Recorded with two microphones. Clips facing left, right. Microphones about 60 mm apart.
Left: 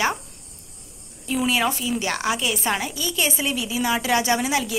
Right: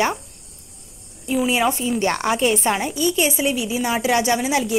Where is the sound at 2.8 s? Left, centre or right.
Right.